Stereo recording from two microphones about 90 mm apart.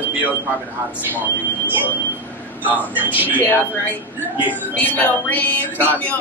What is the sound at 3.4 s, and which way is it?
Speech, 20° left (ahead or behind).